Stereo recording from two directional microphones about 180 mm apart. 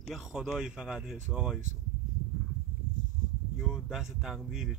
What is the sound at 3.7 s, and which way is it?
Speech, centre (ahead or behind).